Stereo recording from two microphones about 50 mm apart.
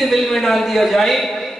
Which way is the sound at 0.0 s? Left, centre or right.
Centre.